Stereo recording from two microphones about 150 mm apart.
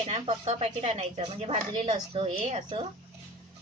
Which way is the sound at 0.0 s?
40° right (ahead or behind).